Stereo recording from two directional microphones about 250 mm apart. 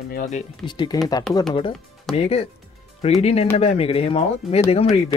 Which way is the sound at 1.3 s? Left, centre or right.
Centre.